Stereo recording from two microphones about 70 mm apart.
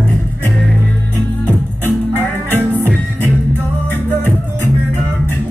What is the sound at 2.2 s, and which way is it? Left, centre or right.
Music, left.